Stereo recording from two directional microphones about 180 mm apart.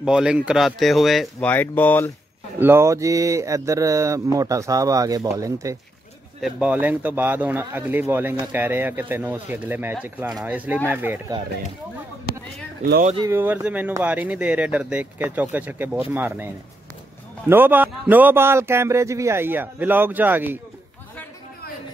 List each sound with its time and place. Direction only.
0.0 s speech: 5° right (ahead or behind)
2.6 s speech: 15° right (ahead or behind)
6.4 s speech: 5° right (ahead or behind)
13.2 s speech: 15° right (ahead or behind)